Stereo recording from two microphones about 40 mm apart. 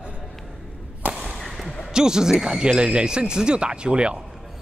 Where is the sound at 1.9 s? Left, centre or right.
Centre.